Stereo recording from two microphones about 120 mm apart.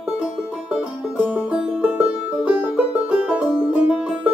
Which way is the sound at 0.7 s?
10° right (ahead or behind).